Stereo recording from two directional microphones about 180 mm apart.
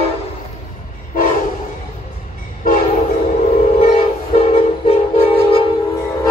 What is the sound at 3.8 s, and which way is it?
Train, 40° left (ahead or behind).